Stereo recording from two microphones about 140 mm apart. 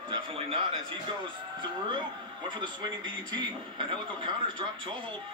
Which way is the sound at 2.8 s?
35° right (ahead or behind).